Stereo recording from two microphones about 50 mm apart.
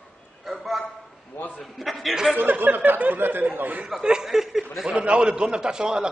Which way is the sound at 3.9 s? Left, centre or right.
Centre.